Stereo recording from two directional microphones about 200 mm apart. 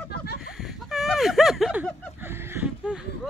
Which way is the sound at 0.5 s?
Centre (ahead or behind).